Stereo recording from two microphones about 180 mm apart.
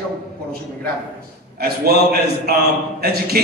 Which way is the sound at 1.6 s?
60° right (ahead or behind).